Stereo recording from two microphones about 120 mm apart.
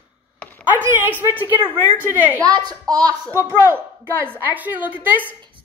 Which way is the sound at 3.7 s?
15° right (ahead or behind).